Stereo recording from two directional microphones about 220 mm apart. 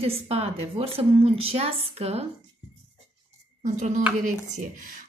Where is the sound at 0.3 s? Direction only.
25° right (ahead or behind).